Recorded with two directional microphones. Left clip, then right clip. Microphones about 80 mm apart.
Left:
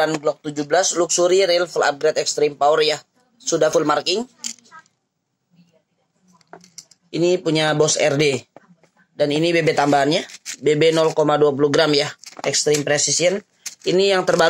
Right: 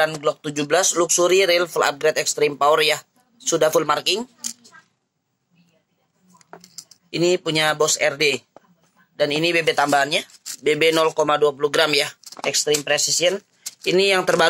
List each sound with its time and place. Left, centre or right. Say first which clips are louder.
0.0 s speech: left 1 dB; centre
7.1 s speech: left 1 dB; left
12.4 s speech: left 2 dB; left
13.3 s speech: left 2 dB; left